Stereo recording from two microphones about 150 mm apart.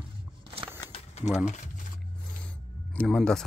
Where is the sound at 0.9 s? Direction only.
45° left (ahead or behind).